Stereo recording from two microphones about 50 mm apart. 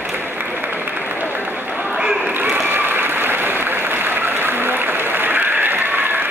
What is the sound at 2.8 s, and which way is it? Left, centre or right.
Applause, right.